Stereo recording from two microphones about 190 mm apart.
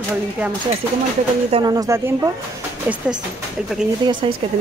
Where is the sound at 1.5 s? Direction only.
20° right (ahead or behind).